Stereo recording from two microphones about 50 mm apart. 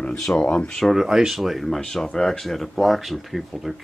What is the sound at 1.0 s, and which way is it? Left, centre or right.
Speech, centre.